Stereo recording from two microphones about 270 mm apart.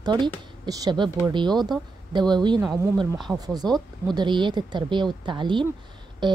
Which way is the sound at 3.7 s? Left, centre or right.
Centre.